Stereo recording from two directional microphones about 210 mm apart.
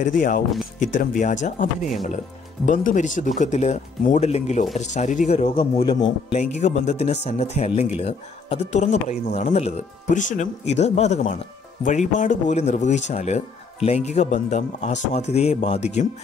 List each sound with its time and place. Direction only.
0.0 s speech: 40° left (ahead or behind)